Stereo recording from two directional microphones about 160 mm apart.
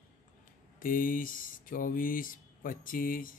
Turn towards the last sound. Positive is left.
turn(degrees=60)  # may be behind; listen again after turning